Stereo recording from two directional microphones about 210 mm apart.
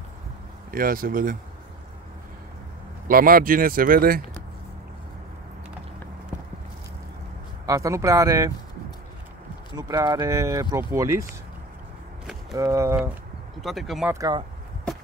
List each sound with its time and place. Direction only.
0.7 s speech: 45° right (ahead or behind)
3.1 s speech: 45° right (ahead or behind)
7.6 s speech: 15° right (ahead or behind)
9.8 s speech: 15° right (ahead or behind)
12.5 s speech: 15° right (ahead or behind)
13.6 s speech: centre (ahead or behind)
14.1 s speech: 20° right (ahead or behind)